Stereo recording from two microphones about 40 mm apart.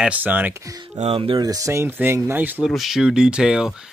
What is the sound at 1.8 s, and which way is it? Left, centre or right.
Speech, right.